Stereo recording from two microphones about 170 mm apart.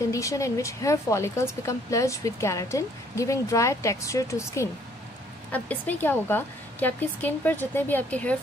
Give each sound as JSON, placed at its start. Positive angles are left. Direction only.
{"t": 0.0, "sound": "a woman's voice", "side_deg": 20}